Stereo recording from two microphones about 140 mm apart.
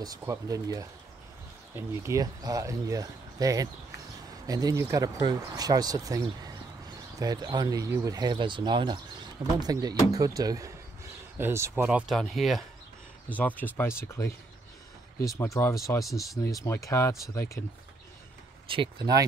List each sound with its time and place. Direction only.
0.2 s speech: 20° right (ahead or behind)
12.1 s speech: centre (ahead or behind)
13.3 s speech: 10° left (ahead or behind)
18.7 s speech: 35° right (ahead or behind)